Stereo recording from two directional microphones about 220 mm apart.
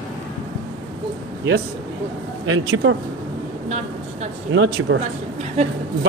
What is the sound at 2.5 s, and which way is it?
Speech, 65° right (ahead or behind).